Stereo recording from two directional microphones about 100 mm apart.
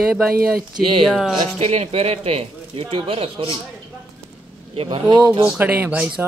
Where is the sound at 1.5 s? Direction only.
90° right; by 3.5 s 65° right (ahead or behind).